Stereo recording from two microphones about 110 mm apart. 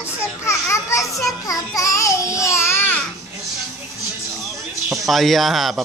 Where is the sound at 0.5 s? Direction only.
25° left (ahead or behind).